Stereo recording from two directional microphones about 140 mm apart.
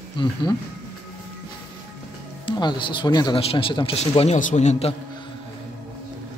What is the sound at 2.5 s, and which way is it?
Speech, 35° left (ahead or behind).